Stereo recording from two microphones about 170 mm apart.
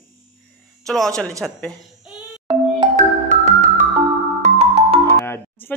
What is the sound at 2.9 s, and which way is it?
Music, 45° right (ahead or behind).